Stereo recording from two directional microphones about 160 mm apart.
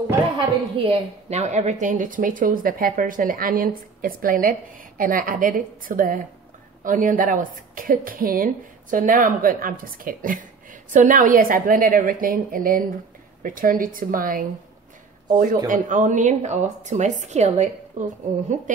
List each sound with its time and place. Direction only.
0.8 s speech: 45° right (ahead or behind)